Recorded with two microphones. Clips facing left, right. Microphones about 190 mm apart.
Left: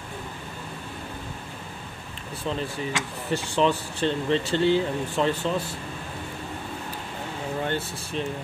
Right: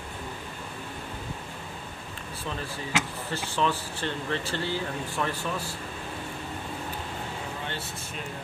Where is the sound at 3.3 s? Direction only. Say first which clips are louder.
Left 5 dB; 15° left (ahead or behind).